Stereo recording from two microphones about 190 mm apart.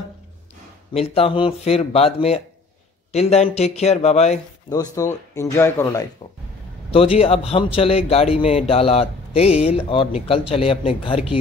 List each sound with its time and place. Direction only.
0.9 s speech: 30° left (ahead or behind)
4.6 s speech: 15° left (ahead or behind)
6.9 s speech: 30° left (ahead or behind)